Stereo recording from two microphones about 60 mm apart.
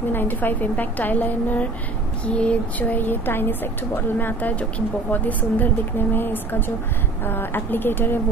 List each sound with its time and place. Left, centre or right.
0.1 s a woman's voice: left
2.8 s speech: left